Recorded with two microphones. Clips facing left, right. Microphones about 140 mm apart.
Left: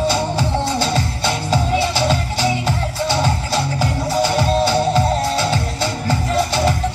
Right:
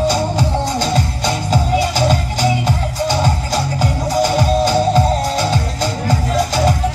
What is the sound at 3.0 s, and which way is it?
Music, 15° right (ahead or behind).